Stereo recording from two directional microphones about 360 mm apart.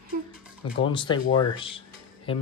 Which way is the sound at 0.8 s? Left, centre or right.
Centre.